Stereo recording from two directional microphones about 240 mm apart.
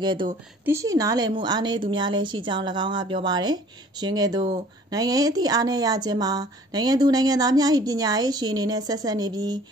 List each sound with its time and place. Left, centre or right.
0.0 s speech: centre